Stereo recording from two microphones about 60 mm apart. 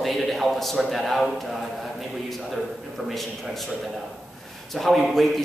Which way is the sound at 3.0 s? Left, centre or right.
Centre.